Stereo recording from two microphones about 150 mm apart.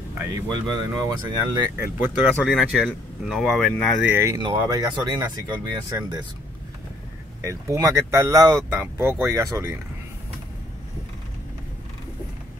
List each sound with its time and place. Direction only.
0.2 s speech: 25° right (ahead or behind)
2.4 s speech: centre (ahead or behind)
4.0 s speech: 15° right (ahead or behind)
4.4 s speech: 30° right (ahead or behind)
7.4 s speech: 20° right (ahead or behind)